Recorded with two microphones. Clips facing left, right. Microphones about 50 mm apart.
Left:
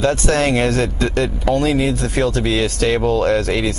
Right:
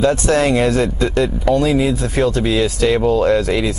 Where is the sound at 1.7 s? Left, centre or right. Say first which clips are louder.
Right 1 dB; left.